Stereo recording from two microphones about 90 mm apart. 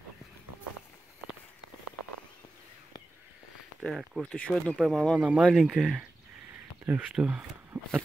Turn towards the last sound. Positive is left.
turn(degrees=-20)  # may be behind; listen again after turning